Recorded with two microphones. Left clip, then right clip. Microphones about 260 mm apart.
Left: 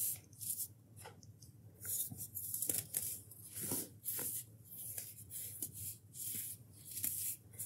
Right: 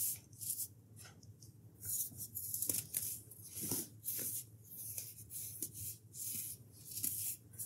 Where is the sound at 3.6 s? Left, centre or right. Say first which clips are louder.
Right 1 dB; centre.